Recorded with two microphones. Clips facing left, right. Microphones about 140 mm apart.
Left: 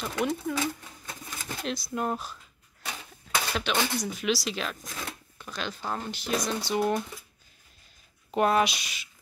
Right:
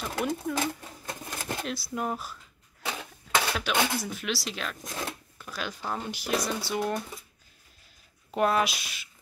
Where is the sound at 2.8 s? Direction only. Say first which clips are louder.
Right 4 dB; 70° right (ahead or behind).